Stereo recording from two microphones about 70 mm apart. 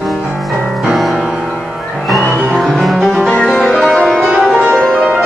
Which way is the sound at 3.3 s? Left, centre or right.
Centre.